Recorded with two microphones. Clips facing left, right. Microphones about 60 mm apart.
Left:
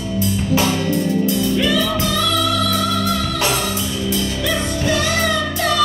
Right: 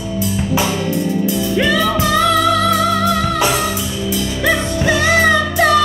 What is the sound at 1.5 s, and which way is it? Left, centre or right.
Music, right.